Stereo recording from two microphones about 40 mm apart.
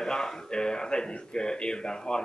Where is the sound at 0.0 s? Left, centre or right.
Centre.